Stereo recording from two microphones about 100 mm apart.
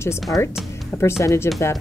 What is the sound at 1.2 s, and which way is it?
Speech, 30° left (ahead or behind).